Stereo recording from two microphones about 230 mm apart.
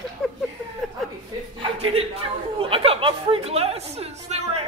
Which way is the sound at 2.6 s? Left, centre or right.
Right.